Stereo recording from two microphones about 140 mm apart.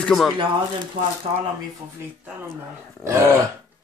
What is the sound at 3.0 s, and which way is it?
Throat clearing, 20° right (ahead or behind).